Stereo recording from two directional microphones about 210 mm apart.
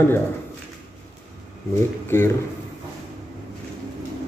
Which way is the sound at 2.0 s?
10° left (ahead or behind).